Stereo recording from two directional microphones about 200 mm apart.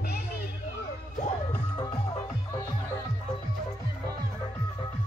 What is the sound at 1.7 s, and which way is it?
Music, 20° left (ahead or behind).